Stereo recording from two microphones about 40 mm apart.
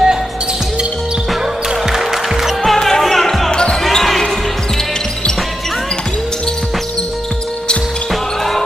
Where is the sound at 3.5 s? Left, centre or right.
Left.